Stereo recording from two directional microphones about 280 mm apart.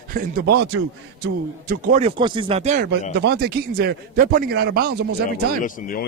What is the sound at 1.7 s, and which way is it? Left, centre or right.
Speech, right.